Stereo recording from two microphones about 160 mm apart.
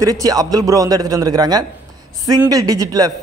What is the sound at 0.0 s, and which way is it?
A man's voice, 20° right (ahead or behind).